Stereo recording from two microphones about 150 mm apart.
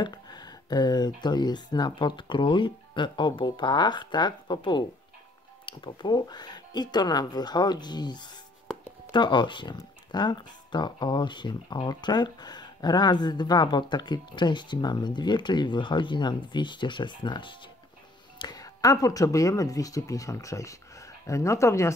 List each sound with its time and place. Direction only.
0.0 s speech: 30° left (ahead or behind)